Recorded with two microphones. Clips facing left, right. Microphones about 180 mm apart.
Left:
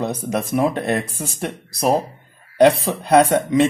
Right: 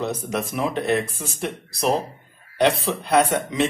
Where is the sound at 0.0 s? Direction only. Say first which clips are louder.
Left 3 dB; 50° left (ahead or behind).